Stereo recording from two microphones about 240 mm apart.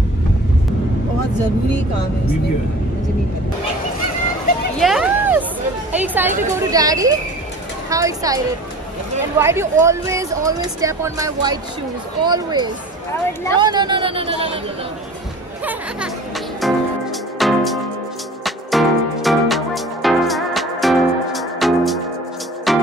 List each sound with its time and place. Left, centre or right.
4.7 s a sound: centre
5.9 s speech: centre
9.4 s speech: centre
13.1 s a woman's voice: centre
13.6 s speech: centre
16.6 s music: centre